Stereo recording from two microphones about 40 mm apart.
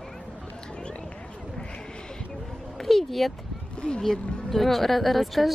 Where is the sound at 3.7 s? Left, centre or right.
Left.